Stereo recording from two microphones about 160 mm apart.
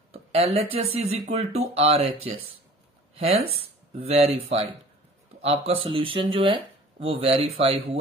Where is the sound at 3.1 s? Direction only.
35° right (ahead or behind).